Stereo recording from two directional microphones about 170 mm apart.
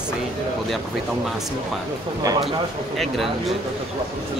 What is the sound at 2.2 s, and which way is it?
Speech, 20° right (ahead or behind).